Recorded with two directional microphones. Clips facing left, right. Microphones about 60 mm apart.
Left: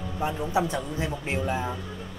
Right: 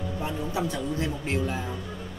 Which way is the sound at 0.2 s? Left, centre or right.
Left.